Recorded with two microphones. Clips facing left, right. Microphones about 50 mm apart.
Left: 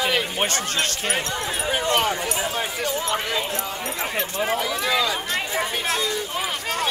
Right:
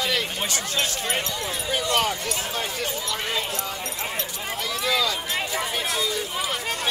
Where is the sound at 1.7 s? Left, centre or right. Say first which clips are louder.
Left 3 dB; left.